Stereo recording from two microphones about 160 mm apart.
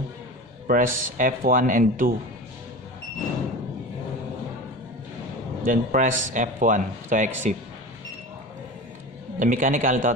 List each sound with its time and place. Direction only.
0.7 s speech: 60° right (ahead or behind)
5.7 s a man's voice: 55° right (ahead or behind)
9.4 s speech: 55° right (ahead or behind)